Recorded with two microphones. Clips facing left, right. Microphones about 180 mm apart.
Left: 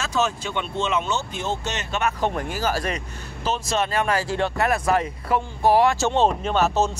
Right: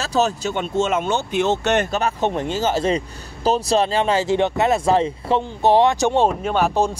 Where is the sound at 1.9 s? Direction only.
35° right (ahead or behind).